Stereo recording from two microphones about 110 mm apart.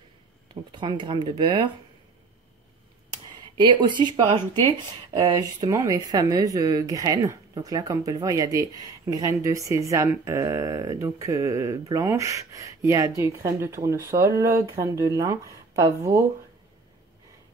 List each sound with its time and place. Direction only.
0.7 s speech: 45° right (ahead or behind)
3.5 s speech: 45° right (ahead or behind)
5.1 s speech: 35° right (ahead or behind)